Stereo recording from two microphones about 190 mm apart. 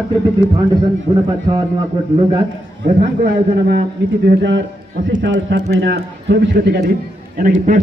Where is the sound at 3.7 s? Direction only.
60° right (ahead or behind).